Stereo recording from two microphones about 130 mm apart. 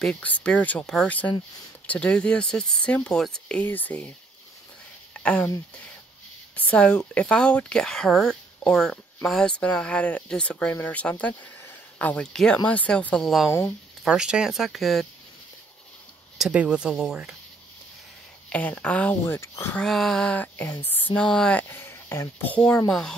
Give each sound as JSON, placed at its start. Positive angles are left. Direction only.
{"t": 0.0, "sound": "speech", "side_deg": 10}
{"t": 5.1, "sound": "speech", "side_deg": 10}
{"t": 6.5, "sound": "speech", "side_deg": 10}
{"t": 13.5, "sound": "speech", "side_deg": 20}
{"t": 14.0, "sound": "speech", "side_deg": -5}
{"t": 16.3, "sound": "speech", "side_deg": -5}
{"t": 18.5, "sound": "speech", "side_deg": 10}
{"t": 19.8, "sound": "speech", "side_deg": 5}
{"t": 21.6, "sound": "speech", "side_deg": 20}